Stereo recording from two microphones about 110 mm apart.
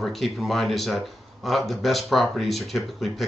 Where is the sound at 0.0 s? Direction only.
Centre (ahead or behind).